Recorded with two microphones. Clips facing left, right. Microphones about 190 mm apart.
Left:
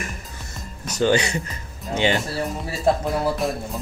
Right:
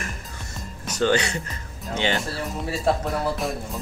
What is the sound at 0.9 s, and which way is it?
Speech, 10° left (ahead or behind).